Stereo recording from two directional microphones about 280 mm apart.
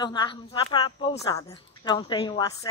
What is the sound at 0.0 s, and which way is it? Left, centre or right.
Speech, centre.